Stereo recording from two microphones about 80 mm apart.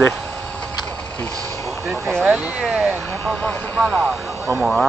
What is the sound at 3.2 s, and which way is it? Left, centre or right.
Speech, centre.